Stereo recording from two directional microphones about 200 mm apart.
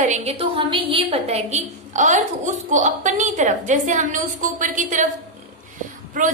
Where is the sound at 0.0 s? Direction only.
35° right (ahead or behind).